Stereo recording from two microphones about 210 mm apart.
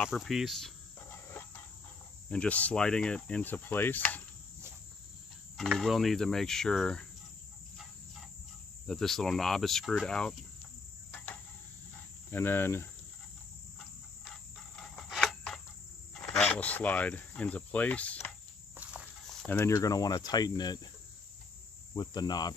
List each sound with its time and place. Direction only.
0.0 s cricket: centre (ahead or behind)
2.2 s speech: 5° left (ahead or behind)
5.6 s cricket: centre (ahead or behind)
8.8 s cricket: centre (ahead or behind)
12.3 s speech: 10° left (ahead or behind)
14.2 s cricket: centre (ahead or behind)
16.3 s speech: 5° left (ahead or behind)
18.8 s cricket: 5° right (ahead or behind)
19.4 s speech: 10° left (ahead or behind)
21.9 s cricket: 20° left (ahead or behind)